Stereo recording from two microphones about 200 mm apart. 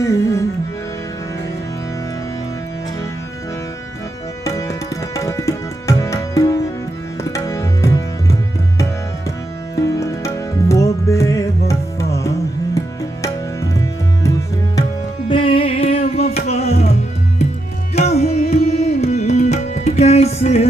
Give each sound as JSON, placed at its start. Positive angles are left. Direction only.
{"t": 0.0, "sound": "music", "side_deg": 15}
{"t": 4.5, "sound": "tabla", "side_deg": 15}
{"t": 9.8, "sound": "music", "side_deg": 15}
{"t": 14.8, "sound": "music", "side_deg": 25}
{"t": 17.9, "sound": "music", "side_deg": 30}